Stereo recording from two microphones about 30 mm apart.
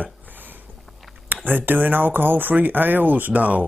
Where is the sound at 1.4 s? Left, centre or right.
Right.